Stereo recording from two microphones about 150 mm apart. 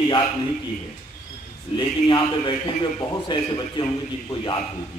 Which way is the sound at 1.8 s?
30° left (ahead or behind).